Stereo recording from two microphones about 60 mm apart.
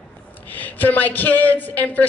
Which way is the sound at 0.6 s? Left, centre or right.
Left.